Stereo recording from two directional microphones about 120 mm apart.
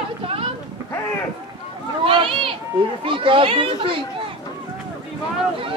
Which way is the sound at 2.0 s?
45° right (ahead or behind).